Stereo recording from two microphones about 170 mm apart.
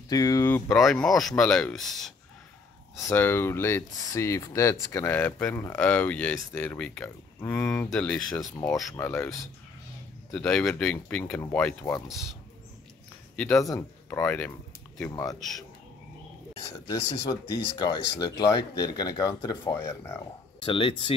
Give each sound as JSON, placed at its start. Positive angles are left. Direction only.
{"t": 0.1, "sound": "speech", "side_deg": 20}
{"t": 0.7, "sound": "speech", "side_deg": 0}
{"t": 3.0, "sound": "speech", "side_deg": 15}
{"t": 8.3, "sound": "speech", "side_deg": 20}
{"t": 10.3, "sound": "speech", "side_deg": 5}
{"t": 11.8, "sound": "speech", "side_deg": 20}
{"t": 13.6, "sound": "speech", "side_deg": 15}
{"t": 16.8, "sound": "speech", "side_deg": 20}
{"t": 20.6, "sound": "speech", "side_deg": 30}